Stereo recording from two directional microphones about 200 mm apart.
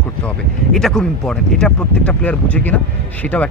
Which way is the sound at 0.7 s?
5° left (ahead or behind).